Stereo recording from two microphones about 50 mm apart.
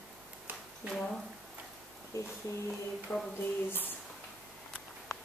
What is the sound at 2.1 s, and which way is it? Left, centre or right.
Speech, left.